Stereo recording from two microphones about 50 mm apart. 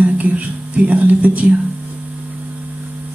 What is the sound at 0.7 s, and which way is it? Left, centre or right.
Speech, right.